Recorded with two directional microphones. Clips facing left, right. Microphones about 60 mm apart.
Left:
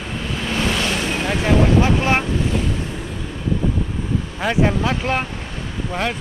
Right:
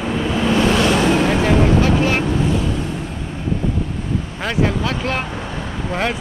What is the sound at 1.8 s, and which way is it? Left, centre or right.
Speech, left.